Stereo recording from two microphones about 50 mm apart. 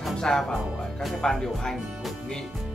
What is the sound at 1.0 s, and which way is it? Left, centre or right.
Speech, centre.